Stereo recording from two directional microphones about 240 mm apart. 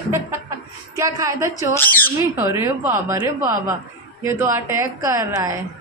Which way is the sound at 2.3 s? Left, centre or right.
Centre.